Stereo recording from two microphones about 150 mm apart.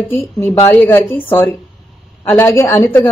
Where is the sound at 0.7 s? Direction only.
15° left (ahead or behind).